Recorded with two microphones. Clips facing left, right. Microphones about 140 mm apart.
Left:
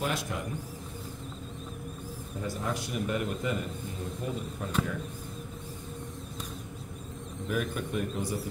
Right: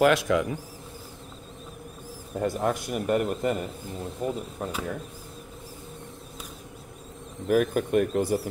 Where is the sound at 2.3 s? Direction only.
60° right (ahead or behind).